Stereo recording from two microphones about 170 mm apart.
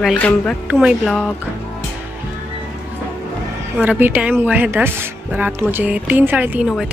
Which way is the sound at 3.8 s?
10° right (ahead or behind).